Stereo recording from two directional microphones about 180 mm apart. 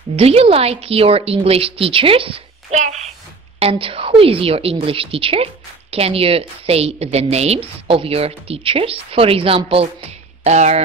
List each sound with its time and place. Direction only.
0.1 s speech: 35° right (ahead or behind)